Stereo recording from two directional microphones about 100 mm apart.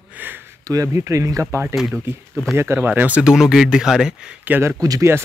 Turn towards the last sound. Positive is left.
turn(degrees=-30)  # may be behind; listen again after turning